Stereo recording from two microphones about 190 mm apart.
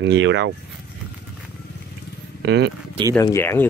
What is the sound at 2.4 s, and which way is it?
Speech, 60° right (ahead or behind).